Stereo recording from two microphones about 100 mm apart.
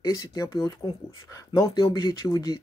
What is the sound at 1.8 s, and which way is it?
Speech, 50° left (ahead or behind).